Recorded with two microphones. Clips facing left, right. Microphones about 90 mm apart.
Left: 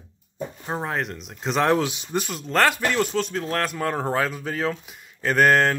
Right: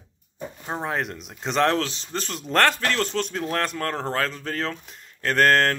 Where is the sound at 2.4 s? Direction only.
Centre (ahead or behind).